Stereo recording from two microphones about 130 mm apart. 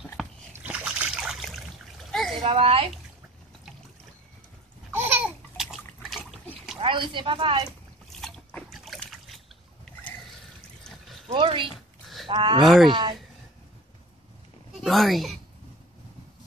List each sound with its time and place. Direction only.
0.2 s a sound: centre (ahead or behind)
0.7 s trickle: 10° right (ahead or behind)
2.1 s splash: centre (ahead or behind)
2.4 s speech: 45° right (ahead or behind)
4.9 s babbling: 15° right (ahead or behind)
5.6 s liquid: centre (ahead or behind)
6.8 s speech: 40° right (ahead or behind)
8.2 s trickle: 5° left (ahead or behind)
11.2 s speech: 40° right (ahead or behind)
12.6 s speech: centre (ahead or behind)
14.8 s speech: centre (ahead or behind)